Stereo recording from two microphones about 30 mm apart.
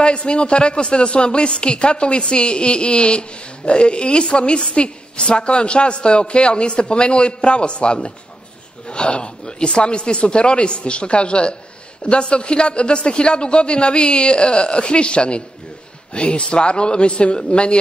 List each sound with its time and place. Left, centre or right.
0.0 s speech: left
4.7 s a sound: left
5.3 s speech: left